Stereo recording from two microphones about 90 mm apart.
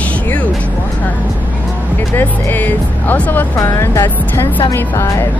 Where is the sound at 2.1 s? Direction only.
20° left (ahead or behind).